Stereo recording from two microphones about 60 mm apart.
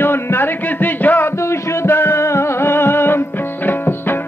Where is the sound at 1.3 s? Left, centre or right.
Left.